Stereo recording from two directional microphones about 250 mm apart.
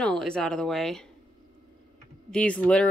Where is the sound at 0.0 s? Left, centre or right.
Centre.